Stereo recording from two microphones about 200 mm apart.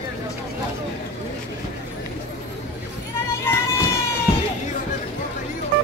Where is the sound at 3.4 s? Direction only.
10° left (ahead or behind).